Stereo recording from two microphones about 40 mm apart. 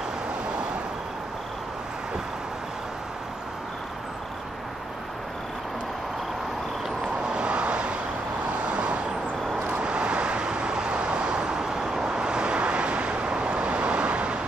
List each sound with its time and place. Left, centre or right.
7.2 s vehicle: right